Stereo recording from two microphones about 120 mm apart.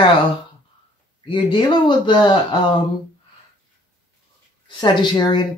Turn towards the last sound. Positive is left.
turn(degrees=40)  # may be behind; listen again after turning